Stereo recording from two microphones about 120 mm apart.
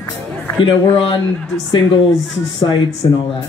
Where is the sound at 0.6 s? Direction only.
45° left (ahead or behind).